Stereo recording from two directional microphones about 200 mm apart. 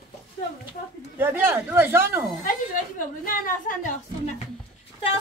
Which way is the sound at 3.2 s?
40° left (ahead or behind).